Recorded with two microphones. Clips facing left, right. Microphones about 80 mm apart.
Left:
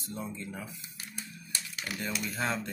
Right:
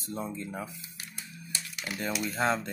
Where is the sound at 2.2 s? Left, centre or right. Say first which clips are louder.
Right 6 dB; right.